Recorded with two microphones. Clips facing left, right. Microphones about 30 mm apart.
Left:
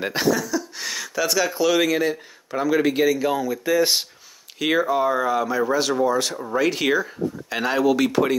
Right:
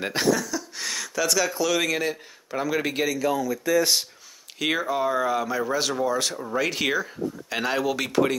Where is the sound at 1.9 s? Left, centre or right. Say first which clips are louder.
Left 4 dB; centre.